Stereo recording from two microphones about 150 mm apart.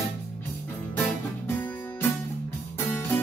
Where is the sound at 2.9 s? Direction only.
15° left (ahead or behind).